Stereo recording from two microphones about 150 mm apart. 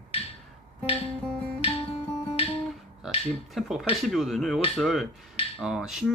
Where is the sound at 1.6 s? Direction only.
40° left (ahead or behind).